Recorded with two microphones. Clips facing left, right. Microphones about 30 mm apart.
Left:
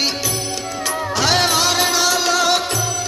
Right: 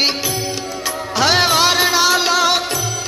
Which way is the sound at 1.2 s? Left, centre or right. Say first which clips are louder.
Right 3 dB; centre.